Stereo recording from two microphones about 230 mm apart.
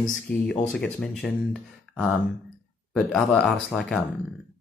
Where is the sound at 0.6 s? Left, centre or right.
Centre.